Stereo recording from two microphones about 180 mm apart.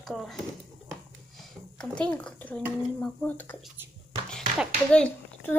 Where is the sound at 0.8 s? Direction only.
Centre (ahead or behind).